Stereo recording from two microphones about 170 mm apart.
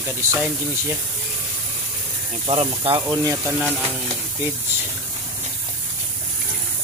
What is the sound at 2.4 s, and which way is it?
Speech, 30° right (ahead or behind).